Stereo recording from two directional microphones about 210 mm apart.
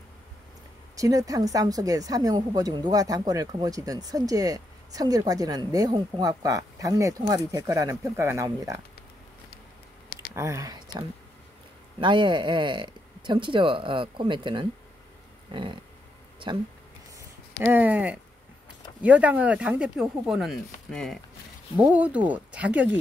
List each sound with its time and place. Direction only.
0.9 s a woman's voice: 15° right (ahead or behind)
10.3 s speech: 15° right (ahead or behind)
17.6 s a woman's voice: 10° right (ahead or behind)